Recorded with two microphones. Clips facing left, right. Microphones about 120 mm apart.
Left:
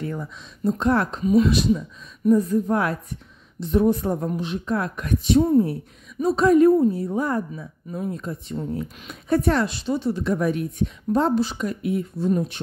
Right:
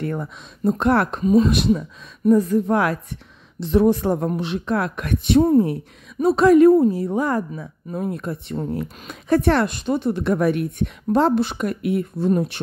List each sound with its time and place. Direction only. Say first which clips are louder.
0.0 s a woman's voice: right 4 dB; 60° right (ahead or behind)
1.2 s speech: right 1 dB; 40° right (ahead or behind)
1.5 s a woman's voice: right 2 dB; 60° right (ahead or behind)